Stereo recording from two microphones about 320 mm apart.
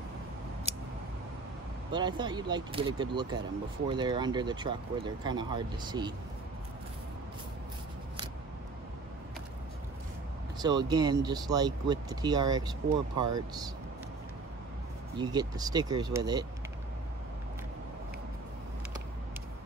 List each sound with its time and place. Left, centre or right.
0.7 s a sound: centre
1.9 s speech: centre
10.6 s speech: centre
15.1 s speech: centre